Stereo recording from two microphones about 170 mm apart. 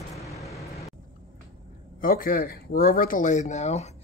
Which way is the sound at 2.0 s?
55° left (ahead or behind).